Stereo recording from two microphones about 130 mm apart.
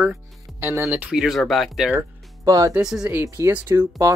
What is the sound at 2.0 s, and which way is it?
Music, 25° right (ahead or behind).